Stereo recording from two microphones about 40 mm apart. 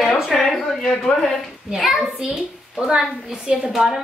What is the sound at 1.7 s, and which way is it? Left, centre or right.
Speech, centre.